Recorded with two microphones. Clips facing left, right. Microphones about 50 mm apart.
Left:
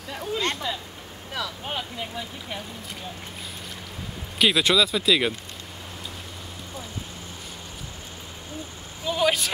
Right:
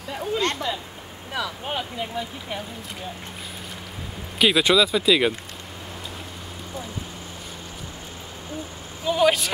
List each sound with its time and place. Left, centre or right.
0.1 s a sound: centre
1.3 s speech: centre
4.4 s speech: centre
9.0 s speech: centre